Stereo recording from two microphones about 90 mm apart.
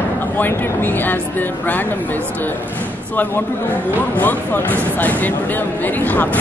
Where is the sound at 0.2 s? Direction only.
20° left (ahead or behind).